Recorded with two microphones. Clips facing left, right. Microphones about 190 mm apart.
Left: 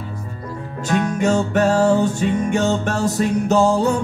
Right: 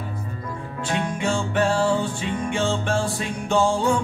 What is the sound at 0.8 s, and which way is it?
Music, 40° left (ahead or behind).